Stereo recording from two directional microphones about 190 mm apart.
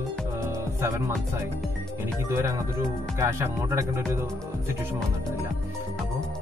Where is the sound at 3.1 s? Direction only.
15° right (ahead or behind).